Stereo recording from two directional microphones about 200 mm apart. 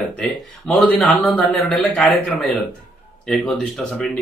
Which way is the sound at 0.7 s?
5° left (ahead or behind).